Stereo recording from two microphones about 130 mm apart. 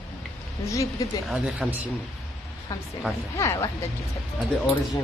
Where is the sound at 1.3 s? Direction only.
10° right (ahead or behind).